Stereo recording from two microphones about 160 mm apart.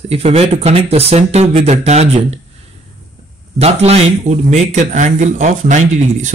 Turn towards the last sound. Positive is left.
turn(degrees=-50)  # may be behind; listen again after turning